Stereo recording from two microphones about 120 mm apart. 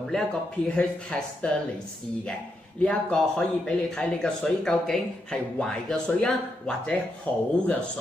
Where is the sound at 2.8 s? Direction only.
10° left (ahead or behind).